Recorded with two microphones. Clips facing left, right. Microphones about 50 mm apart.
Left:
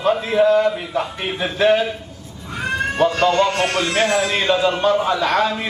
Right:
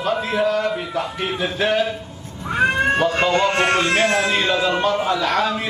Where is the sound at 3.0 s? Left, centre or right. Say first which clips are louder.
Left 2 dB; right.